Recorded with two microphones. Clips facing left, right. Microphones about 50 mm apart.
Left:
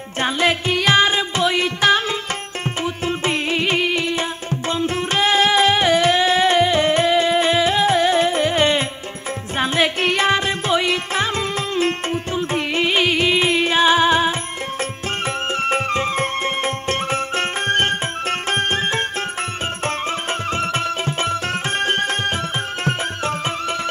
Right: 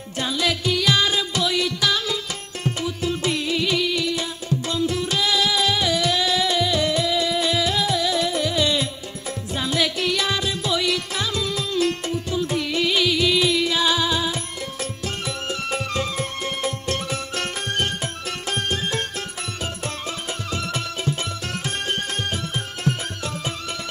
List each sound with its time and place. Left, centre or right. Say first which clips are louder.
0.2 s music: left 5 dB; left
20.5 s music: left 5 dB; left